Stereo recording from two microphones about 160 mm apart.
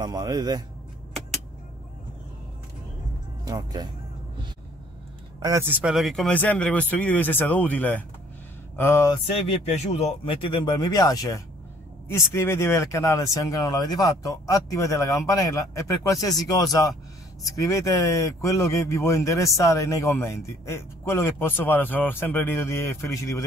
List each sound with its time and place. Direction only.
0.0 s speech: 25° right (ahead or behind)
3.4 s speech: 25° right (ahead or behind)
5.7 s a man's voice: 5° right (ahead or behind); by 9.1 s 15° left (ahead or behind)
9.1 s a man's voice: 40° left (ahead or behind); by 23.4 s 15° left (ahead or behind)